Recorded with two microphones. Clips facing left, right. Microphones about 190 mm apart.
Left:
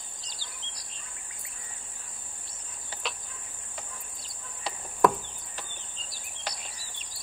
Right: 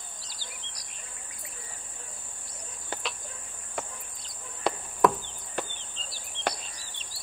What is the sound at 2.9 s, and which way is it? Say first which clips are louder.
Cricket: right 4 dB; 60° right (ahead or behind).